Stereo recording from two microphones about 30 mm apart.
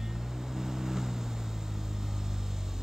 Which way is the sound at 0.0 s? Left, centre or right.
Centre.